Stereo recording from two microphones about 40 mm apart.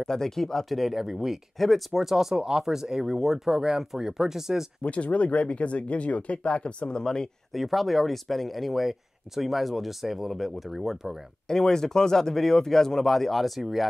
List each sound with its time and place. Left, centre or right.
0.0 s speech: centre
0.7 s speech: centre
4.8 s speech: left
7.5 s speech: centre
11.4 s speech: centre